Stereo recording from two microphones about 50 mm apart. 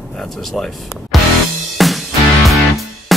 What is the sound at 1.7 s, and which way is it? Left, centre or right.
Music, centre.